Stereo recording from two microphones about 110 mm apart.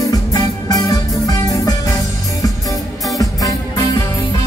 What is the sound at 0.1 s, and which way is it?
Music, 35° left (ahead or behind).